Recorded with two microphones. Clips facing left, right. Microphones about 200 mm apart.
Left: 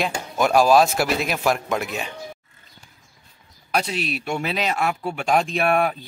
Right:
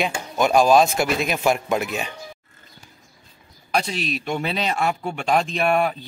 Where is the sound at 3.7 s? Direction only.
5° left (ahead or behind).